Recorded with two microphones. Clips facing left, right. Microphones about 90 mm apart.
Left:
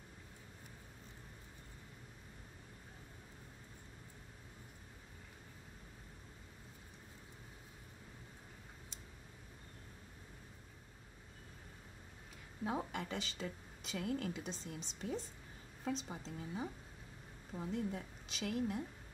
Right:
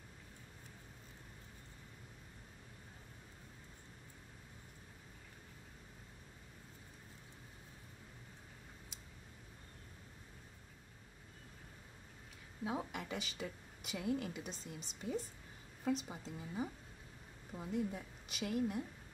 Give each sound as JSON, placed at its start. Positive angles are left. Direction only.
{"t": 12.6, "sound": "a woman's voice", "side_deg": -5}